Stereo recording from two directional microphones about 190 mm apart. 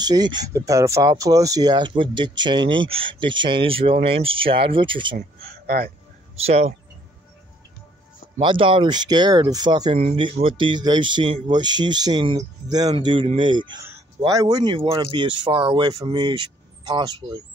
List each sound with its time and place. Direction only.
0.0 s speech: 20° right (ahead or behind)
5.1 s speech: 50° right (ahead or behind)
6.3 s speech: 35° right (ahead or behind)
8.4 s speech: 25° right (ahead or behind)